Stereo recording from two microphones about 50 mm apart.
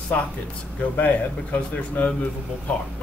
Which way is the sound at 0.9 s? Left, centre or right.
Left.